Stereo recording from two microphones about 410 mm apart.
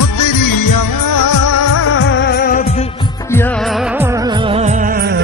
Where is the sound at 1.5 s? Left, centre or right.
Left.